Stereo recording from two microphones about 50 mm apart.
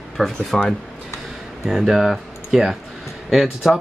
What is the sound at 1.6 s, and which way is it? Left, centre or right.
Speech, centre.